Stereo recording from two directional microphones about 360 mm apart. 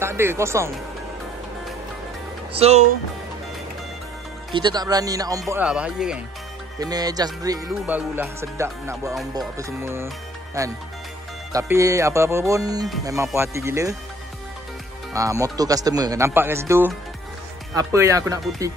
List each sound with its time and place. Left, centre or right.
0.0 s speech: centre
2.5 s speech: centre
4.5 s speech: centre
15.1 s speech: centre